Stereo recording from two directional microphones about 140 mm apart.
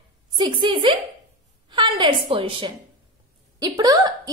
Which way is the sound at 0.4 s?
35° right (ahead or behind).